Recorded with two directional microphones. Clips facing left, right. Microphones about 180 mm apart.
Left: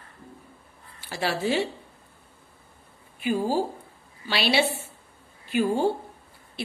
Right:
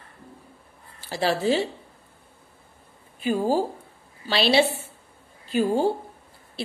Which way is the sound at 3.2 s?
40° right (ahead or behind).